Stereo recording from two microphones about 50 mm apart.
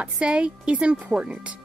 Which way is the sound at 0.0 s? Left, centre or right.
Centre.